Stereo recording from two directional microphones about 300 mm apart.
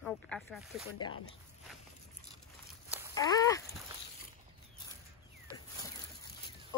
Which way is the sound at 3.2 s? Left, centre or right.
Centre.